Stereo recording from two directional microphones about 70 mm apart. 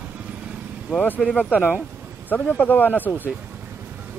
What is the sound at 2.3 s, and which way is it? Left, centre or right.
Speech, left.